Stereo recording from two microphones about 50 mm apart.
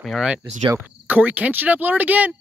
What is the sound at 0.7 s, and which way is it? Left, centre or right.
Speech, right.